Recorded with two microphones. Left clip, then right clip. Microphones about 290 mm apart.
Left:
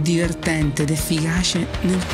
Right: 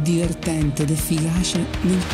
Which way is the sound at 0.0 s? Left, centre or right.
Left.